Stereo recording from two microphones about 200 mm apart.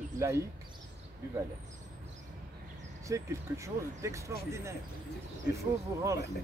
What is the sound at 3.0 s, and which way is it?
Speech, 15° right (ahead or behind).